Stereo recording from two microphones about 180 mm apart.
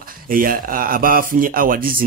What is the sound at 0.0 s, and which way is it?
Speech, 50° right (ahead or behind).